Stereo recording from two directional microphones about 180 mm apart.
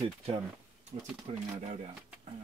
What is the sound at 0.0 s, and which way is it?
Speech, 30° right (ahead or behind).